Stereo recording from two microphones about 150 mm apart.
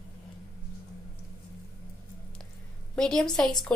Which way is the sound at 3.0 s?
5° left (ahead or behind).